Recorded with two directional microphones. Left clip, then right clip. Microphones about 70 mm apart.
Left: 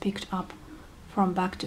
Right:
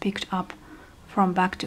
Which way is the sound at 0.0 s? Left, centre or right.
Right.